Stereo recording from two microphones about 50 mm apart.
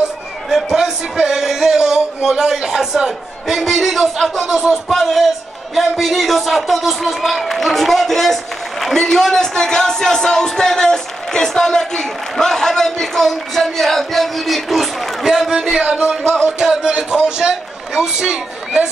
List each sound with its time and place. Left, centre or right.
0.6 s a man's voice: centre